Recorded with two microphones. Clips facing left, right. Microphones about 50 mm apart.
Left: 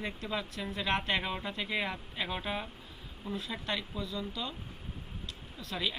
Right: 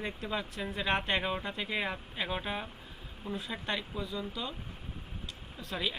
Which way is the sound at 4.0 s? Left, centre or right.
Centre.